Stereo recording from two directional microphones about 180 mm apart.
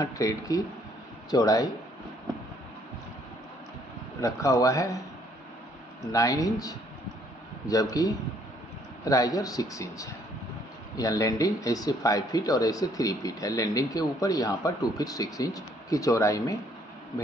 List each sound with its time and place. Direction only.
0.0 s speech: 20° left (ahead or behind)
4.2 s speech: 20° left (ahead or behind)
6.1 s speech: 20° left (ahead or behind)